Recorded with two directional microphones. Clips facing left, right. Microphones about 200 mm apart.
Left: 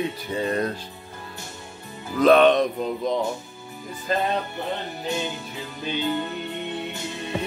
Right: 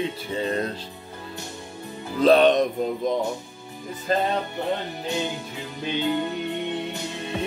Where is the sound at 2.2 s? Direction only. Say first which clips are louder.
Left 1 dB; 35° right (ahead or behind).